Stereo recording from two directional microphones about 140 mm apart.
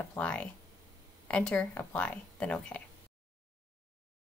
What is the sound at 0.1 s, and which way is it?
A woman's voice, 10° left (ahead or behind).